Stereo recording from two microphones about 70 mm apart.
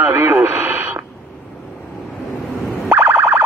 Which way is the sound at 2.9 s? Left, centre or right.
Right.